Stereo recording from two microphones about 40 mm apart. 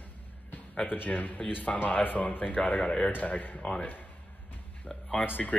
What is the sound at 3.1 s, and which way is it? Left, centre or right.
Speech, left.